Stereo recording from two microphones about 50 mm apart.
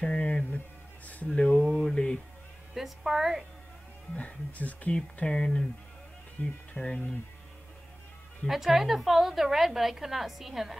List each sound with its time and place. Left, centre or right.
0.0 s speech: centre
1.7 s mantra: centre
2.7 s a woman's voice: centre
4.2 s speech: left
4.9 s speech: centre
8.5 s a woman's voice: centre